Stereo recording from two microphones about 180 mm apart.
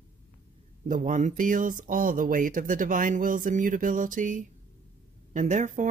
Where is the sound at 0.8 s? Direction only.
45° right (ahead or behind).